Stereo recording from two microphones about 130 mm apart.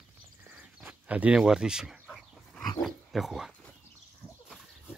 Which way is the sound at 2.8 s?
Centre (ahead or behind).